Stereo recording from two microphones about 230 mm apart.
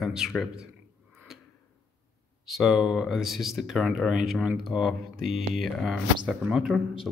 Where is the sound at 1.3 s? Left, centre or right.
Centre.